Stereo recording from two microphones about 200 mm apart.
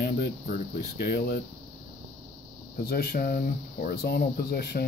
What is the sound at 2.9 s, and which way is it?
Speech, 50° left (ahead or behind).